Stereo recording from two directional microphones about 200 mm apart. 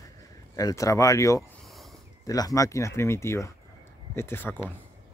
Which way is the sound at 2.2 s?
15° left (ahead or behind).